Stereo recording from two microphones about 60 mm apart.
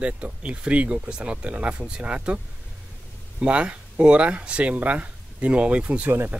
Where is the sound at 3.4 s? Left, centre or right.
Centre.